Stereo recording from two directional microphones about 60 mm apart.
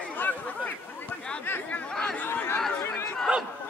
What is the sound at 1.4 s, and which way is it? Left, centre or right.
Chatter, left.